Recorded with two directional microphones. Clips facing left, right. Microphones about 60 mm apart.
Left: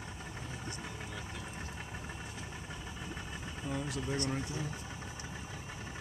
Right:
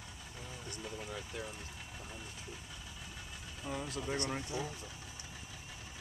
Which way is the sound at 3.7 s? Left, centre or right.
Right.